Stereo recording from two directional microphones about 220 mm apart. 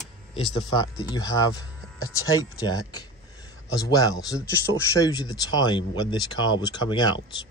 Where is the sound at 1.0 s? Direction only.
15° left (ahead or behind).